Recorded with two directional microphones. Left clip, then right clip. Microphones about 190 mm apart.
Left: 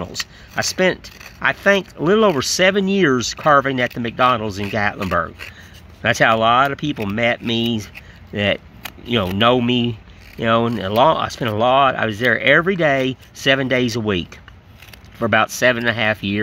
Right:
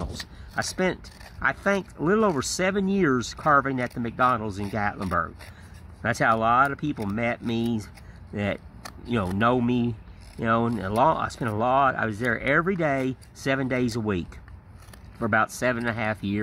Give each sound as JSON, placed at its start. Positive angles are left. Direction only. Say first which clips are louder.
{"t": 0.0, "sound": "speech", "louder": "left 10 dB", "side_deg": 20}